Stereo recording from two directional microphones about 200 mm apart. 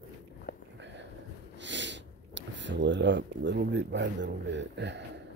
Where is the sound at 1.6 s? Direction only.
65° right (ahead or behind).